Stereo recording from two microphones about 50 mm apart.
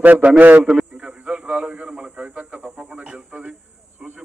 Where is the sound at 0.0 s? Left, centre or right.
Right.